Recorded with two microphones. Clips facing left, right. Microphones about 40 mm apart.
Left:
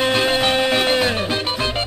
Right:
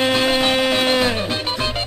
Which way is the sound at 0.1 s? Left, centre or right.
Centre.